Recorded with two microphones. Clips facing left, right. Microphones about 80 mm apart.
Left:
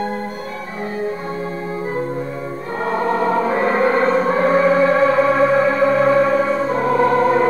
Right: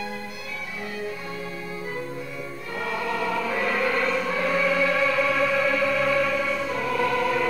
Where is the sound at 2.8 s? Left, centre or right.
Left.